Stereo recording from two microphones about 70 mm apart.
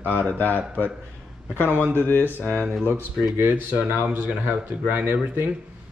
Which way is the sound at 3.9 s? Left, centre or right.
Right.